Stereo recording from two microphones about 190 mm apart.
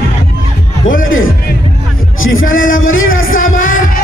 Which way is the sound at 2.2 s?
90° left.